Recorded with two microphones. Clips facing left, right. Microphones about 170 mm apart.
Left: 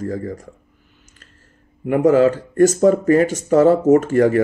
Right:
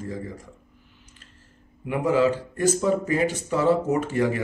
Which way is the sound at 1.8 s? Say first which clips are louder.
Left 8 dB; 50° left (ahead or behind).